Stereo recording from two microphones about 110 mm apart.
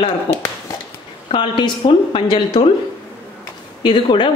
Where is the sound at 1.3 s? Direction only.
45° left (ahead or behind).